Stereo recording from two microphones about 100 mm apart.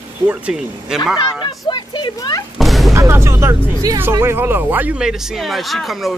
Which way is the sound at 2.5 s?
Centre (ahead or behind).